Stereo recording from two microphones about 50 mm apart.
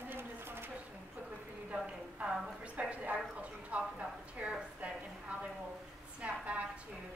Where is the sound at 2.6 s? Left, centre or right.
Right.